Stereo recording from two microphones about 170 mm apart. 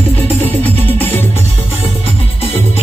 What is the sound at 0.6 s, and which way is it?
Music, 10° left (ahead or behind).